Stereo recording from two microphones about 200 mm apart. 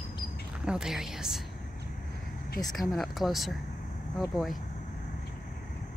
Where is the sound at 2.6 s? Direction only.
20° left (ahead or behind).